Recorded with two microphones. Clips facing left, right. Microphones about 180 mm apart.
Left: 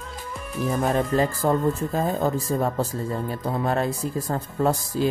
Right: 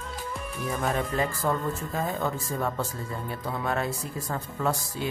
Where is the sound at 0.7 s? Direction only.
35° left (ahead or behind).